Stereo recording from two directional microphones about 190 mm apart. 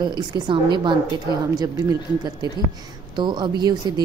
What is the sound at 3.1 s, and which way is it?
Speech, 25° right (ahead or behind).